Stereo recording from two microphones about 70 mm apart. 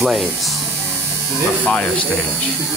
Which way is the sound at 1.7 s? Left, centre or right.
Centre.